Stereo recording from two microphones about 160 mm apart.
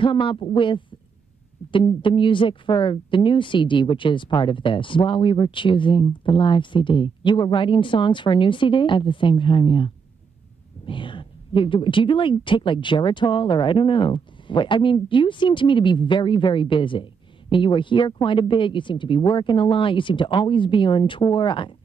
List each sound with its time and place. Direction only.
0.0 s a woman's voice: 30° left (ahead or behind)